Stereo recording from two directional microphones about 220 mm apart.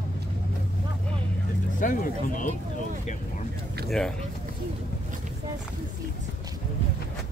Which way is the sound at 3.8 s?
Centre (ahead or behind).